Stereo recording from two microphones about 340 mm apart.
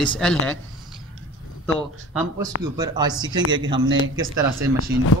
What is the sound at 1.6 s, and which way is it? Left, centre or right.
A man's voice, centre.